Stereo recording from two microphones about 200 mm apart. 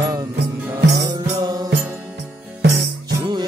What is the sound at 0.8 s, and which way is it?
Music, 55° right (ahead or behind).